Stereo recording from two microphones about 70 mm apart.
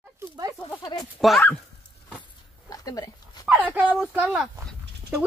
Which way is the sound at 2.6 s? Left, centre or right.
Left.